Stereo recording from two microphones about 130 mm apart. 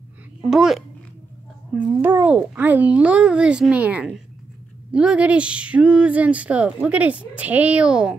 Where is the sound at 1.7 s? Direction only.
15° right (ahead or behind).